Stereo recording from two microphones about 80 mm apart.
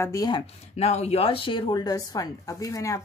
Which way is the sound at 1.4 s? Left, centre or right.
Left.